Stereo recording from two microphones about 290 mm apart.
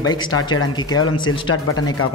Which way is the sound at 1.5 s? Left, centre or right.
Left.